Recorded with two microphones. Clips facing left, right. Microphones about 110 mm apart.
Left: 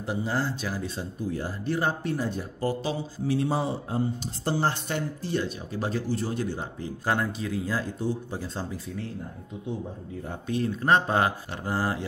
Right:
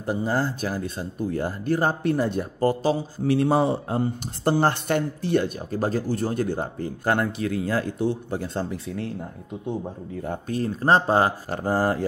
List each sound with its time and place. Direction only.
0.0 s speech: 45° right (ahead or behind)
2.1 s speech: 60° right (ahead or behind); by 3.0 s 45° right (ahead or behind)
3.3 s speech: 65° right (ahead or behind)
10.2 s speech: 50° right (ahead or behind)